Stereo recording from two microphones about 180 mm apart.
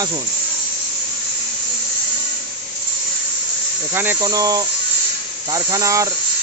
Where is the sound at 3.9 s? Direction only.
15° right (ahead or behind).